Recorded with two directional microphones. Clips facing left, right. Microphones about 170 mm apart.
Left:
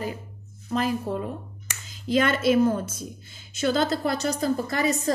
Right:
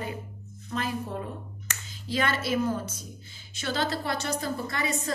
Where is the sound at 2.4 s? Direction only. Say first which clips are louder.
Left 7 dB; 50° left (ahead or behind).